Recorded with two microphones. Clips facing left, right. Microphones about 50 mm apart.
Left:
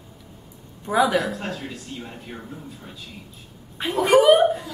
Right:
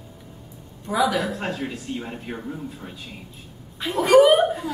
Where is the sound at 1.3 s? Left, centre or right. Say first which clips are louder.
Right 2 dB; right.